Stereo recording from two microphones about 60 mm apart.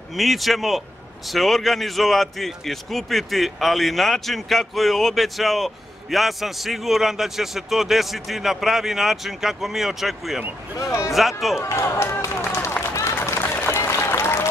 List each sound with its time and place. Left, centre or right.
0.1 s a man's voice: centre
10.8 s speech: left
11.1 s a man's voice: centre
11.6 s speech: left
12.9 s run: left